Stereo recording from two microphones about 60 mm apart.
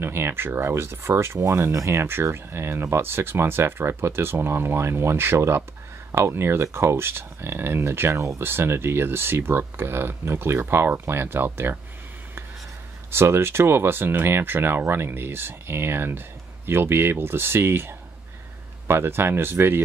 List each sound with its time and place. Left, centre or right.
0.0 s speech: right
13.1 s speech: right